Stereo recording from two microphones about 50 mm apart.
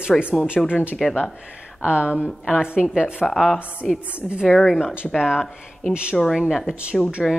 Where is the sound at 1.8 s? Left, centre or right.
Right.